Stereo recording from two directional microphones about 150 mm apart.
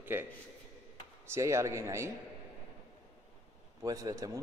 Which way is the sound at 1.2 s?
20° right (ahead or behind).